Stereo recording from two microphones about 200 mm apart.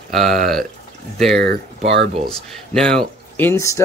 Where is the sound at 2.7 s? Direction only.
5° left (ahead or behind).